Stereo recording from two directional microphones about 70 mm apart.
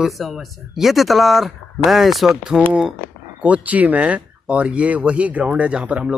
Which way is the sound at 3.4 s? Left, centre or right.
Right.